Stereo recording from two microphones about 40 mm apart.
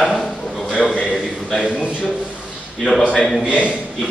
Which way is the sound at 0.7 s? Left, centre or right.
Centre.